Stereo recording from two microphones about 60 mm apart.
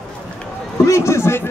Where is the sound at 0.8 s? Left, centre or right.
Left.